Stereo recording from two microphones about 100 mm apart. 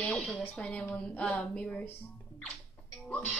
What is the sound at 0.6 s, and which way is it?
Speech, 15° left (ahead or behind).